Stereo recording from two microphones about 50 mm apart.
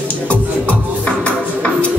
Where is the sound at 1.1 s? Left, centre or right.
Left.